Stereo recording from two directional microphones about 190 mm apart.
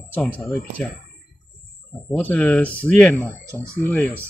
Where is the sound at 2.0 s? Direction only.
10° left (ahead or behind).